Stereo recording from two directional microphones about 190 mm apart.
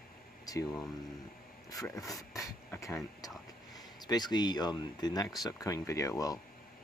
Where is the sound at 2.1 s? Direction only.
20° left (ahead or behind).